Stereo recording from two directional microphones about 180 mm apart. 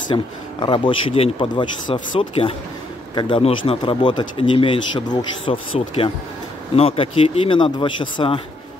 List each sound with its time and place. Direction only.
0.1 s speech: 25° left (ahead or behind)